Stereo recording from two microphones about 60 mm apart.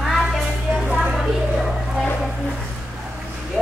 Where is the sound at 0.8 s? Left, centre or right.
Centre.